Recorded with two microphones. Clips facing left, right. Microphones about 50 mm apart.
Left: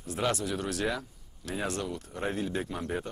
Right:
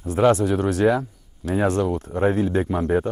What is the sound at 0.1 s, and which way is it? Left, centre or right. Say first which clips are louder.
Speech: right 13 dB; right.